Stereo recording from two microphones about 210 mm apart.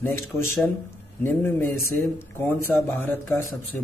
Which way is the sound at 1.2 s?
10° left (ahead or behind).